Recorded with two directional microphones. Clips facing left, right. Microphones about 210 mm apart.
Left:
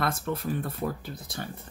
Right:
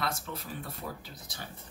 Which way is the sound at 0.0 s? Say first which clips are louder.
Left 7 dB; 55° left (ahead or behind).